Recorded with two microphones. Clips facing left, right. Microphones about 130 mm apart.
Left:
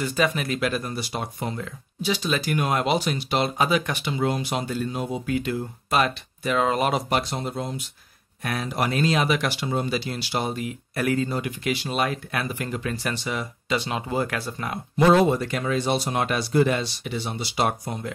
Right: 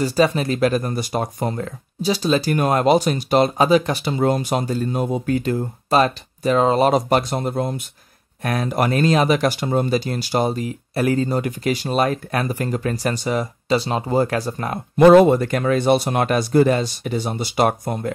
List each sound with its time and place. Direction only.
0.0 s speech: 35° right (ahead or behind); by 18.1 s 50° right (ahead or behind)